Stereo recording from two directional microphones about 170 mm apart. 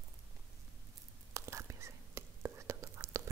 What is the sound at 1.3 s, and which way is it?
Whispering, 15° right (ahead or behind).